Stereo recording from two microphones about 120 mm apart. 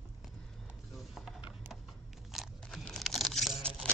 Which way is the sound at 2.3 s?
5° left (ahead or behind).